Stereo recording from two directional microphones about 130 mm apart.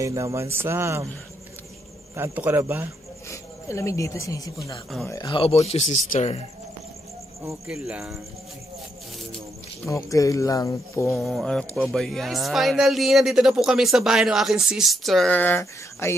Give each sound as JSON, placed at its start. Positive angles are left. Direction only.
{"t": 0.0, "sound": "speech", "side_deg": -25}
{"t": 2.1, "sound": "a man's voice", "side_deg": -15}
{"t": 3.3, "sound": "speech", "side_deg": 20}
{"t": 5.2, "sound": "speech", "side_deg": 45}
{"t": 7.6, "sound": "speech", "side_deg": -5}
{"t": 9.8, "sound": "speech", "side_deg": 25}
{"t": 11.1, "sound": "speech", "side_deg": 5}
{"t": 15.3, "sound": "speech", "side_deg": 15}